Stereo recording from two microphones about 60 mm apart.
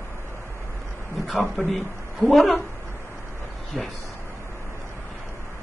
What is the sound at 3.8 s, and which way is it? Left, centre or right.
Speech, centre.